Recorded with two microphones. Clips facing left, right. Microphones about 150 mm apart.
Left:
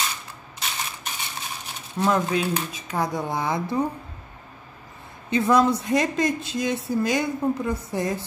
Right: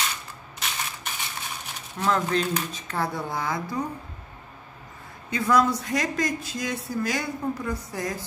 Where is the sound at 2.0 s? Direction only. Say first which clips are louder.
Left 2 dB; 15° left (ahead or behind).